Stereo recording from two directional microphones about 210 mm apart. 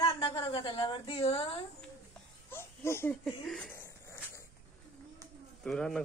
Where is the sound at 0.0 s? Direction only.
20° left (ahead or behind).